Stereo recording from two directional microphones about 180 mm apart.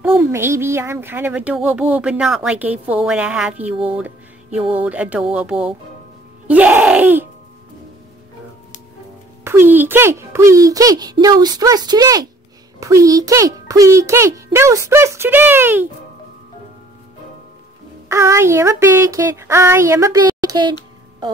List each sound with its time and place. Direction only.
0.0 s a child's voice: 15° right (ahead or behind)
6.4 s music: 10° right (ahead or behind)
9.4 s a child's voice: 15° right (ahead or behind)
18.0 s a child's voice: 15° right (ahead or behind)